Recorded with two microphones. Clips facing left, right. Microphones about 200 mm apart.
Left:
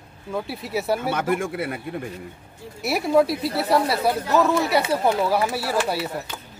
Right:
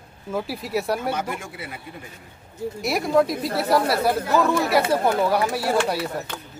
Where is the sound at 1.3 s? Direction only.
55° left (ahead or behind).